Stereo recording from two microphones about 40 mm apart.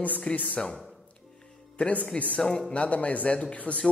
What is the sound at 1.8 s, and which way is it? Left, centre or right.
A woman's voice, left.